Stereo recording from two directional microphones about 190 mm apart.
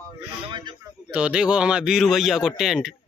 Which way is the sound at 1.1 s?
5° right (ahead or behind).